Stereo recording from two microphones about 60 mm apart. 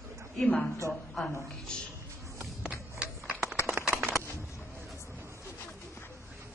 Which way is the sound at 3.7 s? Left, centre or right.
Right.